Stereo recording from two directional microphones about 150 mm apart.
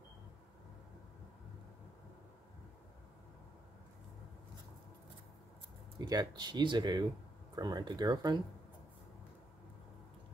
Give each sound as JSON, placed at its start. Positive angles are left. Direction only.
{"t": 5.9, "sound": "speech", "side_deg": -25}